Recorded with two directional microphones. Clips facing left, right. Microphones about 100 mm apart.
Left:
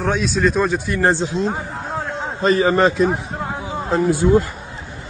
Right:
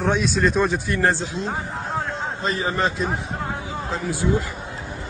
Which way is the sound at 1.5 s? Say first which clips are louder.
Left 1 dB; centre (ahead or behind).